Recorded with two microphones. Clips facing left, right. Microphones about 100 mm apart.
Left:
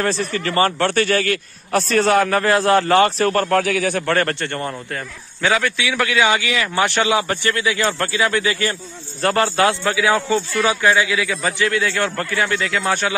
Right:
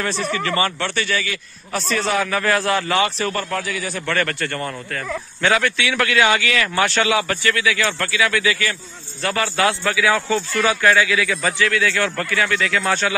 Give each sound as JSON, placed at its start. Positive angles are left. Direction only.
{"t": 0.3, "sound": "a man's voice", "side_deg": 40}
{"t": 2.4, "sound": "a man's voice", "side_deg": 25}
{"t": 2.7, "sound": "a man's voice", "side_deg": 40}
{"t": 4.0, "sound": "a man's voice", "side_deg": 40}
{"t": 4.4, "sound": "a man's voice", "side_deg": 25}
{"t": 5.4, "sound": "a man's voice", "side_deg": 5}